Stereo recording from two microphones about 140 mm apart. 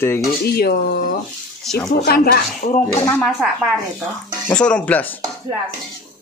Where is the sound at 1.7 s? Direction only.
Centre (ahead or behind).